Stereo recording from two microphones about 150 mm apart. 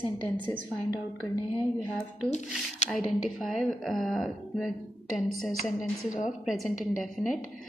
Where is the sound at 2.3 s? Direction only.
50° left (ahead or behind).